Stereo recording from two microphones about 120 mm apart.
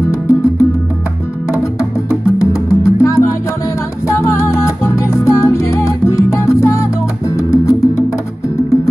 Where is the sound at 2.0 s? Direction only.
25° left (ahead or behind).